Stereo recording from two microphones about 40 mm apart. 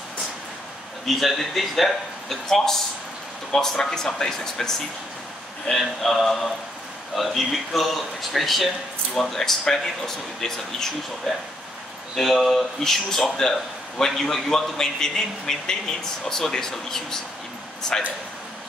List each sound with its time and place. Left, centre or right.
1.0 s a man's voice: centre
9.1 s a man's voice: centre
12.2 s a man's voice: centre